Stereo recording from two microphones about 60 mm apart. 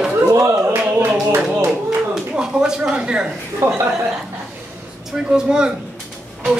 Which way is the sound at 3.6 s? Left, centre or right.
Right.